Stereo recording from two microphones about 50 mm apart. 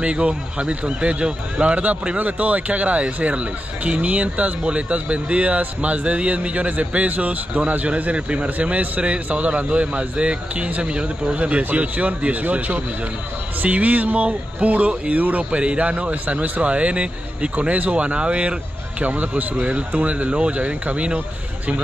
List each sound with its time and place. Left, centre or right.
0.0 s speech: right